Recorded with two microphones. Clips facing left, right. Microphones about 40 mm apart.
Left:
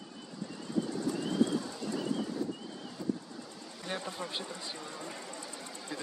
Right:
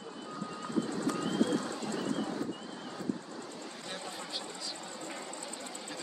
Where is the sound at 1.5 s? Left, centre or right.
Right.